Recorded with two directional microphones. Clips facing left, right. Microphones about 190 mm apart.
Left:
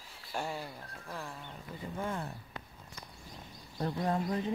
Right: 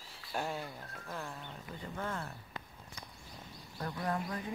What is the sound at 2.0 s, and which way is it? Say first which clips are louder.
Speech: left 3 dB; 15° left (ahead or behind).